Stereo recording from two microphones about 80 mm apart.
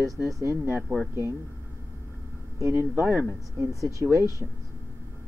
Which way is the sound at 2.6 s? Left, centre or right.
Right.